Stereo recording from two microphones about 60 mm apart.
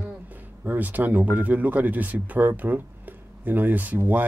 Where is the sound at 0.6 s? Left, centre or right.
Right.